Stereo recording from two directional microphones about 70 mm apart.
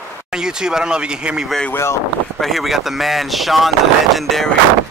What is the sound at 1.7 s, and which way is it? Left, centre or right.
Speech, left.